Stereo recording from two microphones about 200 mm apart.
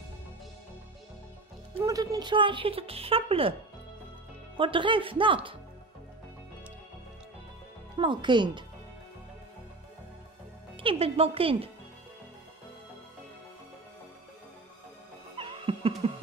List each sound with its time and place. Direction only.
1.8 s a woman's voice: 20° right (ahead or behind)
4.6 s a woman's voice: 25° right (ahead or behind)
8.0 s a woman's voice: 25° right (ahead or behind)
10.8 s a woman's voice: 30° right (ahead or behind)
15.3 s a sound: 25° right (ahead or behind)